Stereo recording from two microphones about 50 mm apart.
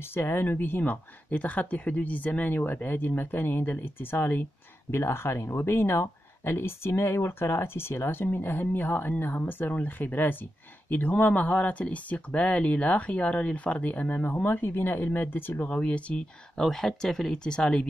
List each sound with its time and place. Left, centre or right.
0.0 s speech: left
1.3 s speech: left
4.9 s speech: left
15.7 s speech: left
16.6 s speech: centre